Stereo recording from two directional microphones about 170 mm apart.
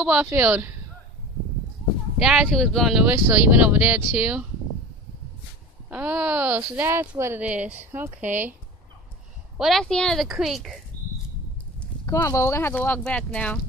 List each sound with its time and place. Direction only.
0.0 s speech: 5° right (ahead or behind)
2.1 s speech: 5° right (ahead or behind)
5.9 s speech: 5° right (ahead or behind)
9.6 s speech: centre (ahead or behind)
12.1 s speech: 15° left (ahead or behind)